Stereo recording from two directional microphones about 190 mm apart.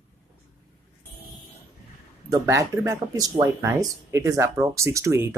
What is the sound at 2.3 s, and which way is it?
Speech, 15° right (ahead or behind).